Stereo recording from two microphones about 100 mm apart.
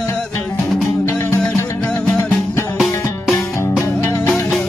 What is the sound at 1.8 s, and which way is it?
Music, 5° left (ahead or behind).